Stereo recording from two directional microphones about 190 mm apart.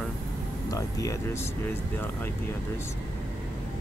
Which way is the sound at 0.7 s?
15° left (ahead or behind).